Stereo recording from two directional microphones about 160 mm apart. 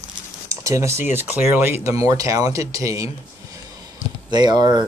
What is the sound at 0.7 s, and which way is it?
Speech, 20° right (ahead or behind).